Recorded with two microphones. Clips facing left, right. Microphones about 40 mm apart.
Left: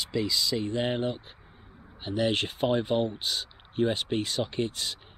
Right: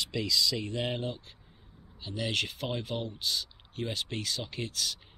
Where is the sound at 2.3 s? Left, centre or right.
Centre.